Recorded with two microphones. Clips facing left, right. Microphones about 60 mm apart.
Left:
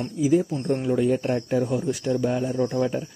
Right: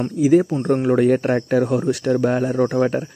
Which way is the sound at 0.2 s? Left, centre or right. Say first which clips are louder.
Right 6 dB; right.